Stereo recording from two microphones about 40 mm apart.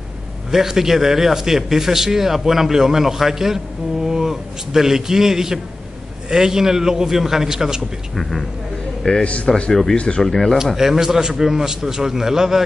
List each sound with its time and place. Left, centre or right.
0.5 s speech: centre
8.2 s speech: centre
9.0 s speech: left
9.7 s speech: centre
9.9 s speech: left
10.2 s speech: centre
10.8 s speech: centre